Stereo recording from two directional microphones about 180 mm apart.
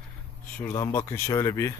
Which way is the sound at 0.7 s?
20° left (ahead or behind).